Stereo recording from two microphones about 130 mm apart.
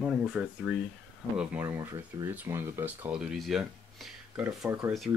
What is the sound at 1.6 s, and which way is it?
Speech, 20° right (ahead or behind).